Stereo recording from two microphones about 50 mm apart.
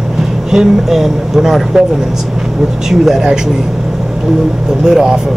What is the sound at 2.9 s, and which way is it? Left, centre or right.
Speech, centre.